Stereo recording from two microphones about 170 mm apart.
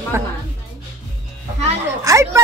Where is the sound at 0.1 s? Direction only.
15° right (ahead or behind).